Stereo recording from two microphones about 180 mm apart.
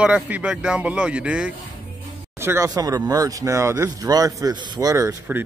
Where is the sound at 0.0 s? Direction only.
5° right (ahead or behind).